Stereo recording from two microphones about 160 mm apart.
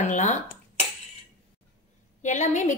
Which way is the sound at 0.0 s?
50° left (ahead or behind).